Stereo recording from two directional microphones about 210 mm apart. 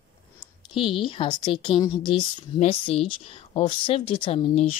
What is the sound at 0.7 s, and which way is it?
Speech, 25° left (ahead or behind).